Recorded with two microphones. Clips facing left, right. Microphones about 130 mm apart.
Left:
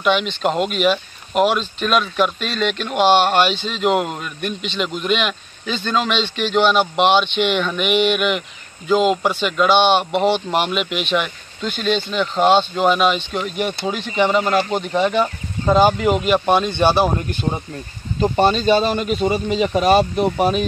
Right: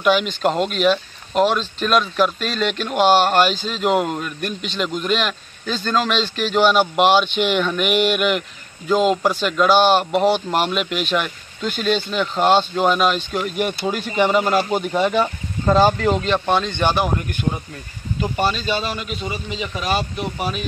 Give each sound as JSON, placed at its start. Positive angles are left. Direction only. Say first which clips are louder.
{"t": 0.0, "sound": "speech", "louder": "right 1 dB", "side_deg": 0}
{"t": 18.2, "sound": "speech", "louder": "left 6 dB", "side_deg": 30}